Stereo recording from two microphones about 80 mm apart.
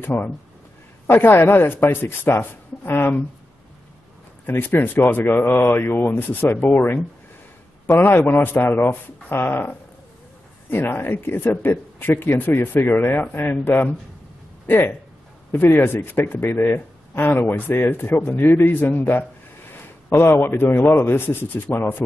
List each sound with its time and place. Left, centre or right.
0.0 s speech: left
4.5 s speech: left
19.7 s a sound: left
20.3 s speech: left